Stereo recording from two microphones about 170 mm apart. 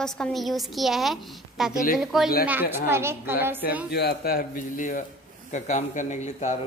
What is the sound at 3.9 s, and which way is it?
Speech, 70° left (ahead or behind).